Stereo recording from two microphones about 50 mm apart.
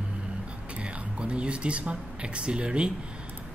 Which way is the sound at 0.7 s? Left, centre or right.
Right.